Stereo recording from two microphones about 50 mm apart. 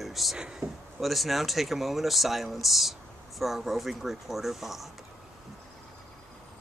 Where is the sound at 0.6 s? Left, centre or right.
Right.